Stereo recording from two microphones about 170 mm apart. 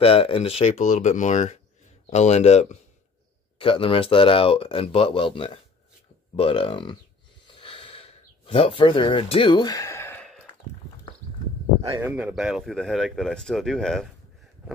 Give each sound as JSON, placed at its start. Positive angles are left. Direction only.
{"t": 0.0, "sound": "speech", "side_deg": 35}
{"t": 7.4, "sound": "a sound", "side_deg": 30}
{"t": 11.9, "sound": "speech", "side_deg": -10}